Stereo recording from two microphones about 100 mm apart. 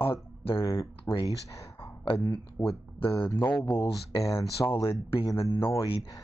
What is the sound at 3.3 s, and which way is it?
Speech, 20° left (ahead or behind).